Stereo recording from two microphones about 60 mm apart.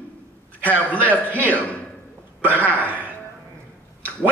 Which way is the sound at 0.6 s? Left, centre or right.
Left.